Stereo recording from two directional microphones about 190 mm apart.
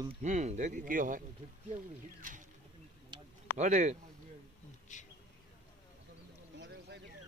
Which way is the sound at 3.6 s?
40° right (ahead or behind).